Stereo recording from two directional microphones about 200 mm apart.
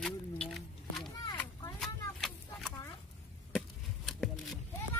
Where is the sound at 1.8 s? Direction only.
Centre (ahead or behind).